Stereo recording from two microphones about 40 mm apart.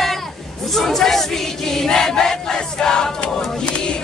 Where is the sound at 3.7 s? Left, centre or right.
Left.